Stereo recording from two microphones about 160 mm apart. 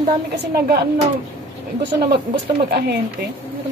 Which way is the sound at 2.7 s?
90° right.